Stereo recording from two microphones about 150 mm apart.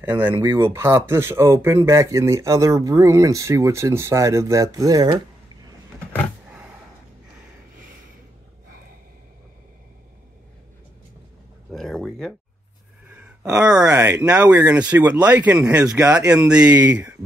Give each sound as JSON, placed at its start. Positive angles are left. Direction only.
{"t": 0.1, "sound": "speech", "side_deg": -15}
{"t": 11.7, "sound": "a sound", "side_deg": 0}
{"t": 13.8, "sound": "speech", "side_deg": -15}